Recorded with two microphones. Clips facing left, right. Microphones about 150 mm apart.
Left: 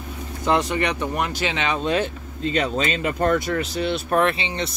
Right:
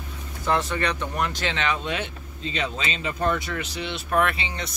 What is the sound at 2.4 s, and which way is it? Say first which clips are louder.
Speech: left 7 dB; 45° left (ahead or behind).